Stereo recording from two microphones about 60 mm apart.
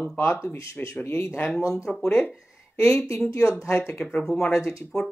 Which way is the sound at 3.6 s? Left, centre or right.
Left.